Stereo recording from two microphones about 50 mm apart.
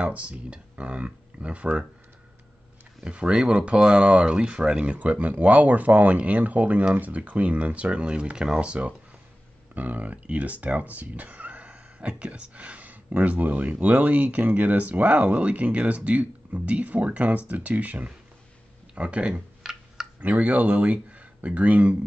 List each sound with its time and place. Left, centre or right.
0.1 s speech: right
3.0 s speech: right
19.6 s a sound: centre
20.2 s speech: right